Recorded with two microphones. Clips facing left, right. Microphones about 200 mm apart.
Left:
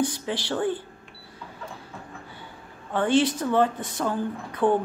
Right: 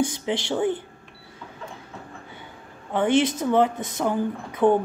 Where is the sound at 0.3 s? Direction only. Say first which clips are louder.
Right 3 dB; 15° right (ahead or behind).